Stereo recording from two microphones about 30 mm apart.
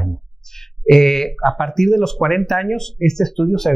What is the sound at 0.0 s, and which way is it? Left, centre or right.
Speech, centre.